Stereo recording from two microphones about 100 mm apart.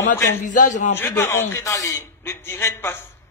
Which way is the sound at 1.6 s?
35° left (ahead or behind).